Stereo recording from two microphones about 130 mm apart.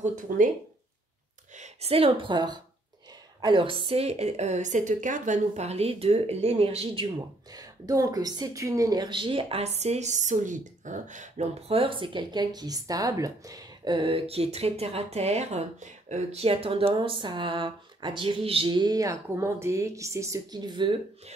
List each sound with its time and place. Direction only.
0.0 s speech: 80° right
1.6 s a woman's voice: 50° right (ahead or behind)
7.5 s a woman's voice: 30° right (ahead or behind)